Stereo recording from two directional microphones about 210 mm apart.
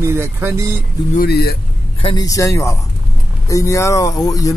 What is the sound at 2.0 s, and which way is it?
Speech, 20° left (ahead or behind).